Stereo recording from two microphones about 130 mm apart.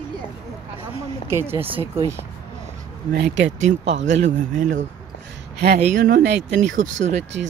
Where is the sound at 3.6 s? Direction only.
65° right (ahead or behind).